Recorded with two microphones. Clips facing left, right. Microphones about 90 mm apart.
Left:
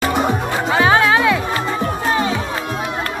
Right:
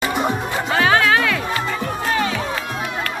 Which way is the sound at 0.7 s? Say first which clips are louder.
Left 2 dB; 20° left (ahead or behind).